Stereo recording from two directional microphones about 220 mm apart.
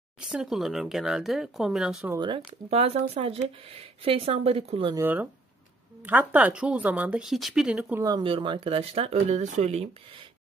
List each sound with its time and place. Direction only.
0.2 s speech: 5° right (ahead or behind)
2.1 s speech: 20° right (ahead or behind)
4.9 s speech: 10° right (ahead or behind)
8.0 s speech: 20° right (ahead or behind)